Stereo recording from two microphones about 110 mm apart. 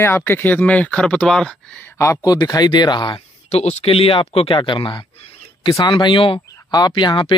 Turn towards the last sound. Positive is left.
turn(degrees=45)  # may be behind; listen again after turning